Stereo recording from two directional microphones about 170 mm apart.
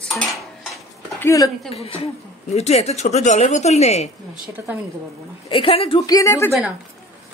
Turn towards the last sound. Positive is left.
turn(degrees=15)  # may be behind; listen again after turning